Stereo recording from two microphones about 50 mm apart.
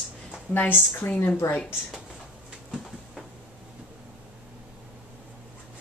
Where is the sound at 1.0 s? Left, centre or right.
Left.